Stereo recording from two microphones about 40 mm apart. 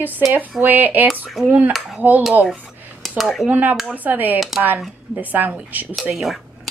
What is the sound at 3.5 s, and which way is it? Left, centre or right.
A woman's voice, right.